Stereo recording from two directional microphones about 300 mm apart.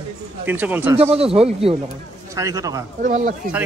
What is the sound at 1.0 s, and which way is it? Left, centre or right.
A man's voice, centre.